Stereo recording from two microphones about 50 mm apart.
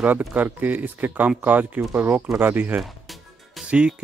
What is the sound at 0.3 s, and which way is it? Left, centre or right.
Speech, right.